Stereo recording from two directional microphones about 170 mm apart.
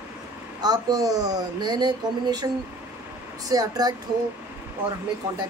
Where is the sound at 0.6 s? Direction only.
20° right (ahead or behind).